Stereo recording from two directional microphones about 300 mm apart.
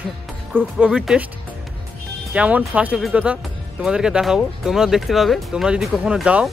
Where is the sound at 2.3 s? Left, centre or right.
Centre.